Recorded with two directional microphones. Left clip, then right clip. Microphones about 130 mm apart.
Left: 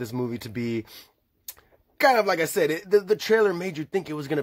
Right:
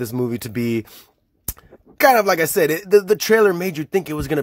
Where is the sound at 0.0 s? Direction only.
40° right (ahead or behind).